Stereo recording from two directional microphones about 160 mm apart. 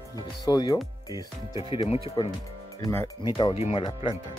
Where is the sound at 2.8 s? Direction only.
20° left (ahead or behind).